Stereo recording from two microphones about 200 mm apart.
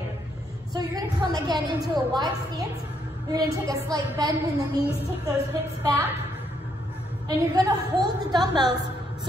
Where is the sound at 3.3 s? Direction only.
20° right (ahead or behind).